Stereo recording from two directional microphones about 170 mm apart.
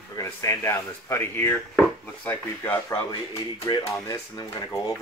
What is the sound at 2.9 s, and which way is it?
Speech, 25° left (ahead or behind).